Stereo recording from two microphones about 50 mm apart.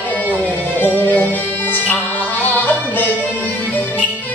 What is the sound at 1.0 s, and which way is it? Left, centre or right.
Music, left.